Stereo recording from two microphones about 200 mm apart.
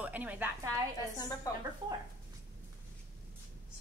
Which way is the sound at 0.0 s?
10° right (ahead or behind).